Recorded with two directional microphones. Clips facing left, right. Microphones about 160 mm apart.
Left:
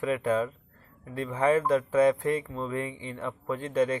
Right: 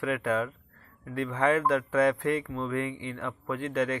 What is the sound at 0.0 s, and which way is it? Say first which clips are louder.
Speech: left 2 dB; 25° left (ahead or behind).